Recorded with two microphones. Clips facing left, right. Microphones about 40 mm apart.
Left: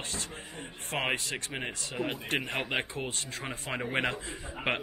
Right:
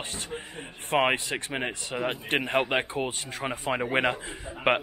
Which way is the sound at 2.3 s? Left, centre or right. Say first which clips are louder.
Right 5 dB; right.